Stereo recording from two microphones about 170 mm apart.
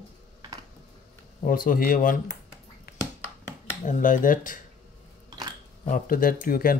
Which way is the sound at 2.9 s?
65° left (ahead or behind).